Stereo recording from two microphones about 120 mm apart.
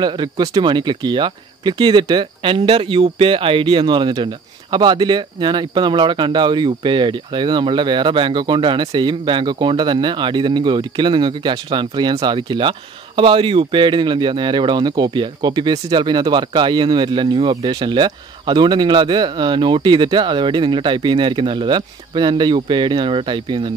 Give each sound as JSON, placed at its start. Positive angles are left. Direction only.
{"t": 0.0, "sound": "speech", "side_deg": -35}